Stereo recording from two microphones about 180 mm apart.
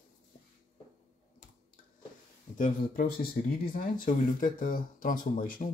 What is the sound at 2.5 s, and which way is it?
Speech, 50° left (ahead or behind).